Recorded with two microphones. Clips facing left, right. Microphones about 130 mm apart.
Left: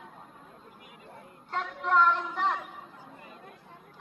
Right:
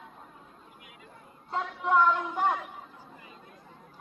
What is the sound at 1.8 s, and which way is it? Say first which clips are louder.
Speech: right 1 dB; 10° right (ahead or behind).